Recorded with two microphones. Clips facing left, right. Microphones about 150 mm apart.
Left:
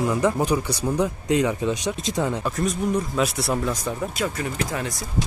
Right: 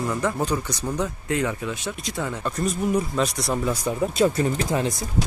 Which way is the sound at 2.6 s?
Centre (ahead or behind).